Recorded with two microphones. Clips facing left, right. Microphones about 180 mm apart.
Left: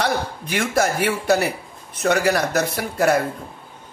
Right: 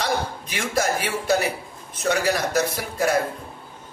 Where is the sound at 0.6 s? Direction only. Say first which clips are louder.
Left 3 dB; 60° left (ahead or behind).